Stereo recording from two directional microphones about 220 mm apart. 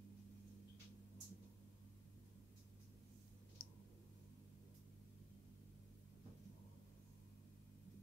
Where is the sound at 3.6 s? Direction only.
40° left (ahead or behind).